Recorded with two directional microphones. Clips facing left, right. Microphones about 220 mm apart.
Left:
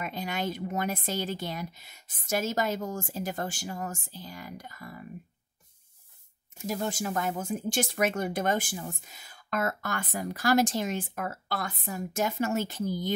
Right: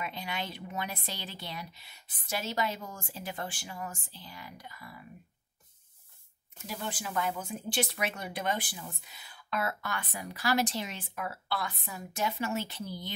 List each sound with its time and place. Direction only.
0.0 s speech: 45° left (ahead or behind)
6.7 s speech: 45° left (ahead or behind)